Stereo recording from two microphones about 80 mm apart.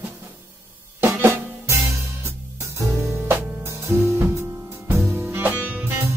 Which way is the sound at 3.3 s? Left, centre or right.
Right.